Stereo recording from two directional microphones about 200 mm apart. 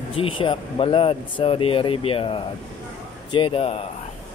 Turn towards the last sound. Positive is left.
turn(degrees=25)  # may be behind; listen again after turning